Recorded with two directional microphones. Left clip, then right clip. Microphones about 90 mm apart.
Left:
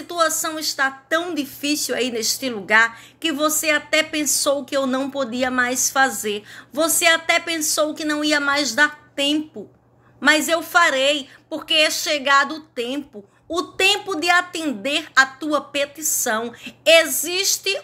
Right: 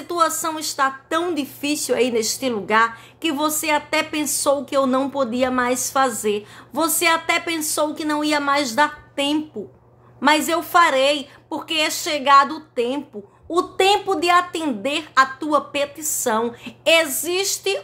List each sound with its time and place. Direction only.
0.0 s a woman's voice: 50° right (ahead or behind)
2.6 s a woman's voice: 35° right (ahead or behind)
3.2 s a woman's voice: 50° right (ahead or behind)